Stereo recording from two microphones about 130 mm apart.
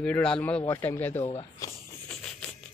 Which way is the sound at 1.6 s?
25° left (ahead or behind).